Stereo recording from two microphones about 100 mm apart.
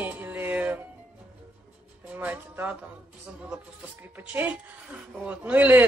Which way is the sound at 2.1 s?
20° right (ahead or behind).